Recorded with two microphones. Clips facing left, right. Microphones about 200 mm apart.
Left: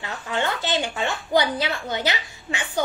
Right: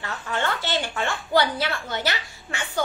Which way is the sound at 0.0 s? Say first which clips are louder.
Left 1 dB; 15° left (ahead or behind).